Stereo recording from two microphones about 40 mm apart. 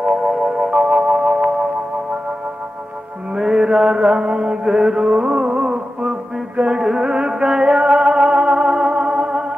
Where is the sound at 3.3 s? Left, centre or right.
Centre.